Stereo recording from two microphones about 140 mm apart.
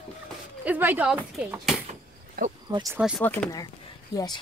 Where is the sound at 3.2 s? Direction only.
10° left (ahead or behind).